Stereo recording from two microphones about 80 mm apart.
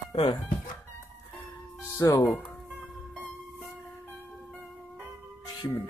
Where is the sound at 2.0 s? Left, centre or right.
Left.